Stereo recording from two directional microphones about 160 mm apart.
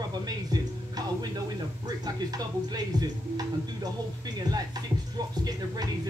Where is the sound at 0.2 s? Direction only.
25° right (ahead or behind).